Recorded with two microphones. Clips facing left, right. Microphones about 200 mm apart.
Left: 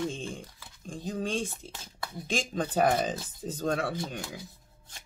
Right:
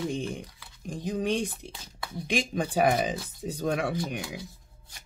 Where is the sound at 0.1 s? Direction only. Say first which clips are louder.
Right 5 dB; 20° right (ahead or behind).